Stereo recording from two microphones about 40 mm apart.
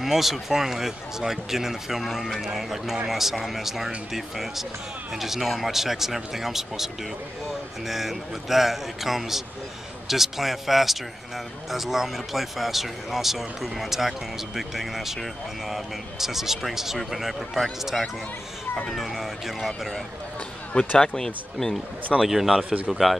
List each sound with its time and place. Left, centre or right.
0.0 s speech: centre
21.0 s speech: centre
22.2 s speech: centre